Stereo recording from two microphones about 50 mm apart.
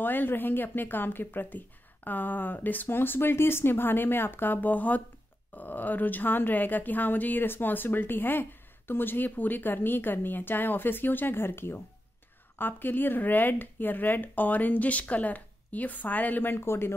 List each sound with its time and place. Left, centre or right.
0.0 s speech: left
16.5 s speech: left